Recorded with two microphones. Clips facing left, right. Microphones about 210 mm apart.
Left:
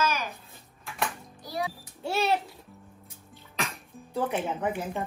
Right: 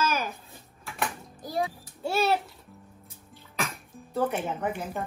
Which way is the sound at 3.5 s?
Centre (ahead or behind).